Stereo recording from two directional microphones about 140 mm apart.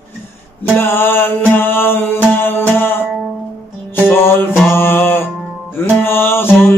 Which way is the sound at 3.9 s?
15° left (ahead or behind).